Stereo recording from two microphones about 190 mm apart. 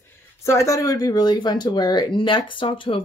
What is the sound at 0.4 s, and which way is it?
Speech, 15° left (ahead or behind).